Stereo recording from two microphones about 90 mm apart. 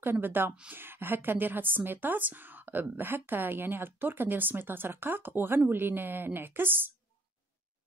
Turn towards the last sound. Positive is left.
turn(degrees=-25)  # may be behind; listen again after turning